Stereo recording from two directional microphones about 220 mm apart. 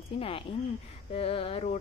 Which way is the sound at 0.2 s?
25° left (ahead or behind).